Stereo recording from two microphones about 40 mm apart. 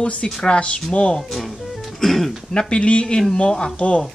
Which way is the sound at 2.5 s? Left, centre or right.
Left.